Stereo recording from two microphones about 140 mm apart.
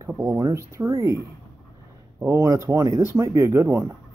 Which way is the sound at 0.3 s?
20° right (ahead or behind).